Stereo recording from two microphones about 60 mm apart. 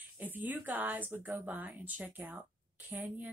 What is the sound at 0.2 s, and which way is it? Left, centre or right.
A woman's voice, right.